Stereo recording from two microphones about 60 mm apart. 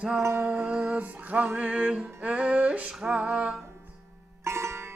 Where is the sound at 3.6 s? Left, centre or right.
Right.